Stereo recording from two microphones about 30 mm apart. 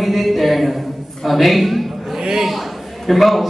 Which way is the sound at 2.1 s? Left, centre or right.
Right.